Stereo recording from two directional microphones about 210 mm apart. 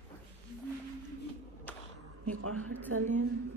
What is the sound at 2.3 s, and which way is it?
Speech, 90° right.